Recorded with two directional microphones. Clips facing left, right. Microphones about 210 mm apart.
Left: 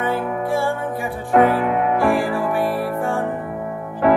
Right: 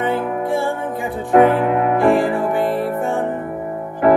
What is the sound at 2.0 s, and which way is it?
Music, 20° right (ahead or behind).